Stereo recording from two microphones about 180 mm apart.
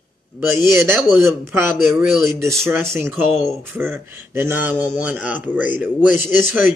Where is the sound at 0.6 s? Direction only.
15° right (ahead or behind).